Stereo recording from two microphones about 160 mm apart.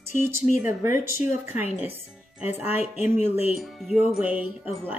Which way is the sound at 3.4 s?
Centre (ahead or behind).